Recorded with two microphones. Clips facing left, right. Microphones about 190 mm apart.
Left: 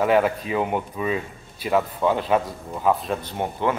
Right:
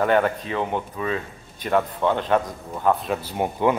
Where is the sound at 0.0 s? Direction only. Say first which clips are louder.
Left 1 dB; 5° left (ahead or behind).